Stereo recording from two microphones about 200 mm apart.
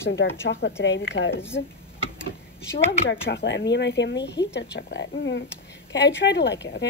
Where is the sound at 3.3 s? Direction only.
60° left (ahead or behind).